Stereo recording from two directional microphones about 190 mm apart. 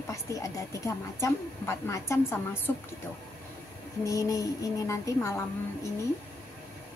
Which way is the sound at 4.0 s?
15° left (ahead or behind).